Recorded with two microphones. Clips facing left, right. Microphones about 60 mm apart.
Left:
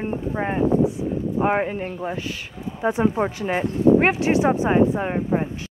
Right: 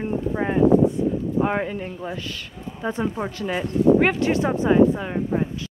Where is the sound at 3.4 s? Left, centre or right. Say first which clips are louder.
Right 1 dB; left.